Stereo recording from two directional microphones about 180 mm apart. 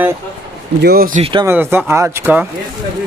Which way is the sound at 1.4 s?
10° right (ahead or behind).